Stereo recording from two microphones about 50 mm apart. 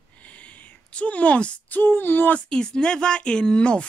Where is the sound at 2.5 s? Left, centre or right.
Centre.